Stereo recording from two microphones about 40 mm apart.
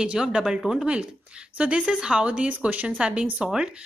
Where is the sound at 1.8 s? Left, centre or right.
Centre; by 2.8 s right.